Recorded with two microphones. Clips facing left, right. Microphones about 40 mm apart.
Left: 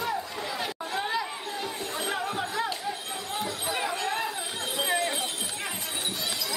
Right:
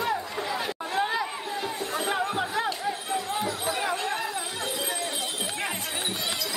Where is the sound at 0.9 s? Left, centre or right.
Centre.